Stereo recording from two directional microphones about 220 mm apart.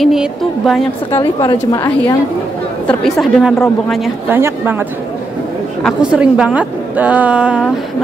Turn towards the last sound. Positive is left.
turn(degrees=-5)  # may be behind; listen again after turning